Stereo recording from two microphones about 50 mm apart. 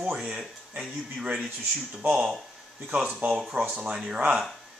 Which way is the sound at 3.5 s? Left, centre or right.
Right.